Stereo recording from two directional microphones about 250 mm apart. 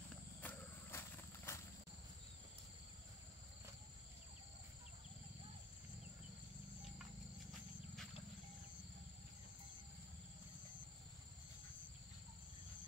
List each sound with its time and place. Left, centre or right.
0.4 s wild animals: centre